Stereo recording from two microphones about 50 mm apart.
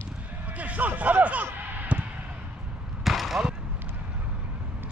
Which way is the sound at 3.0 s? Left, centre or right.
Centre.